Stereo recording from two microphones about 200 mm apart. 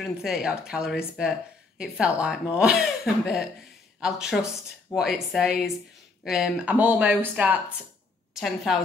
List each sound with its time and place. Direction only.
0.0 s speech: centre (ahead or behind)